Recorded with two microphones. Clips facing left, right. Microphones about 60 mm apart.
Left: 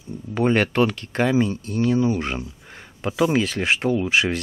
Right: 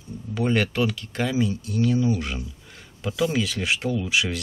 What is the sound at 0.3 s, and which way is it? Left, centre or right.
Speech, left.